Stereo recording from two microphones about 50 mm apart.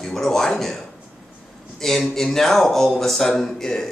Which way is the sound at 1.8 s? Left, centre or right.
Centre.